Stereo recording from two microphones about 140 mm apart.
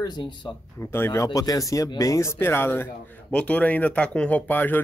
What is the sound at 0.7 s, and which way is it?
Speech, 15° left (ahead or behind).